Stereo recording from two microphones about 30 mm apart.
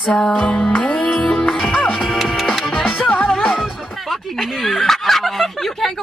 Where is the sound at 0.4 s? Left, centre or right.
Left.